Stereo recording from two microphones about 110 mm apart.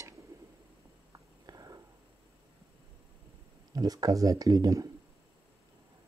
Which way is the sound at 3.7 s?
35° right (ahead or behind).